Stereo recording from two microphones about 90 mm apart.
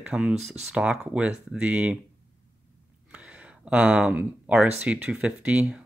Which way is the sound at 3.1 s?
15° right (ahead or behind).